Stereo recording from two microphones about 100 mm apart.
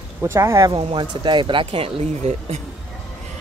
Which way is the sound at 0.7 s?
50° right (ahead or behind).